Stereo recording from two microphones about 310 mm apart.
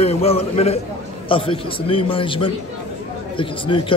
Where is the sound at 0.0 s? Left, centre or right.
Centre.